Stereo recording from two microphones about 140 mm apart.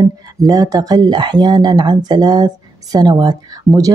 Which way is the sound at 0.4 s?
25° right (ahead or behind).